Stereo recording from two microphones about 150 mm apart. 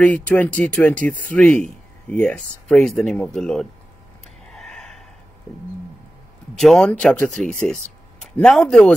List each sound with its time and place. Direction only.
0.0 s speech: 10° left (ahead or behind)
4.5 s a sound: 5° left (ahead or behind)
6.5 s speech: 5° left (ahead or behind)